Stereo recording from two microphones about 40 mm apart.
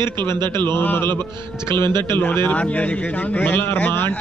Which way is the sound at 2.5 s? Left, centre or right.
Left.